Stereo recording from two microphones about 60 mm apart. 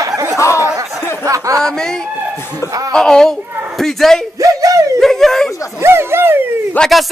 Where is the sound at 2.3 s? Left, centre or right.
Left.